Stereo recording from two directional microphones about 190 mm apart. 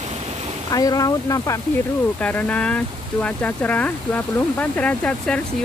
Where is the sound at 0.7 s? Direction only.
20° left (ahead or behind).